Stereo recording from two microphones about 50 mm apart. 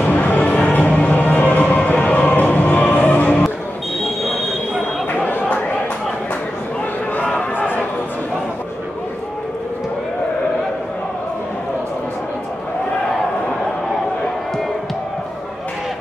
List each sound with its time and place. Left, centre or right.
0.0 s music: left